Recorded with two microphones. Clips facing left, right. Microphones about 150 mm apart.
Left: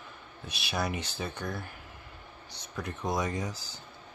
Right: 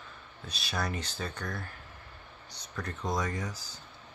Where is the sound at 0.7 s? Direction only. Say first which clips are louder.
Left 2 dB; 10° left (ahead or behind).